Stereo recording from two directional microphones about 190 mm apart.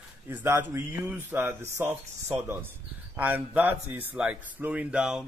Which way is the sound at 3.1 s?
10° right (ahead or behind).